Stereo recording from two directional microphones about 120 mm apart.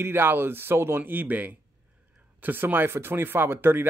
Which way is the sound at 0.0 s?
20° right (ahead or behind).